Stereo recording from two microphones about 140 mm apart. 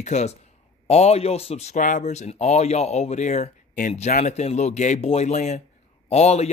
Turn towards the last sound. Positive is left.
turn(degrees=50)  # may be behind; listen again after turning